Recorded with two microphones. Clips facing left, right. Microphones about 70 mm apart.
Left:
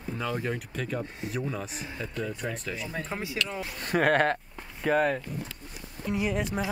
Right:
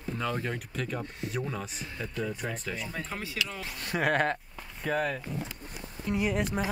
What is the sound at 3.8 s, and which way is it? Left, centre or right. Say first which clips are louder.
Speech: left 4 dB; left.